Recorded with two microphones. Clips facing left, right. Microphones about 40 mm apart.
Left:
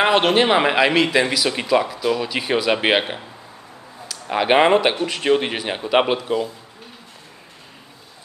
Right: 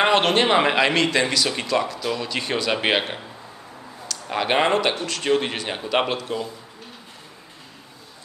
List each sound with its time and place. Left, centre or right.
0.0 s speech: centre